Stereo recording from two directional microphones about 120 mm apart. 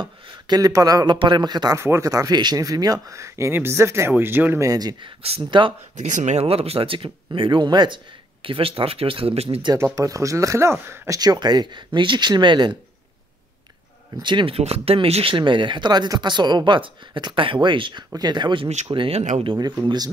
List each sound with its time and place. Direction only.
0.0 s speech: 35° right (ahead or behind)
1.8 s speech: 25° right (ahead or behind)
4.6 s speech: 35° right (ahead or behind)
5.9 s speech: 90° right; by 9.6 s 60° right (ahead or behind)
9.9 s speech: 30° right (ahead or behind)
11.1 s speech: 35° right (ahead or behind)
14.2 s speech: 45° right (ahead or behind)
14.6 s speech: 55° right (ahead or behind)
15.3 s speech: 40° right (ahead or behind)
19.4 s speech: 40° right (ahead or behind)